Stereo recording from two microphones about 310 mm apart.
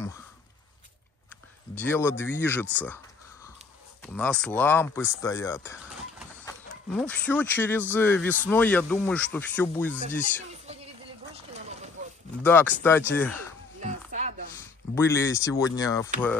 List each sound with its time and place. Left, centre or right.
1.8 s speech: centre
4.0 s speech: centre
7.0 s speech: centre
12.4 s speech: centre
13.7 s a sound: right
15.0 s speech: centre